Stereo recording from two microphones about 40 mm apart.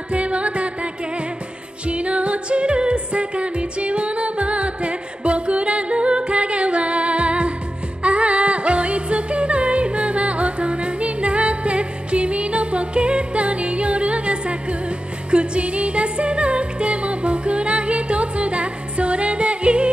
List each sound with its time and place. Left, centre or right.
0.1 s music: right
1.9 s music: right